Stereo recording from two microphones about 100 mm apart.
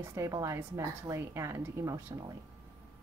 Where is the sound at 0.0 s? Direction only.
30° right (ahead or behind).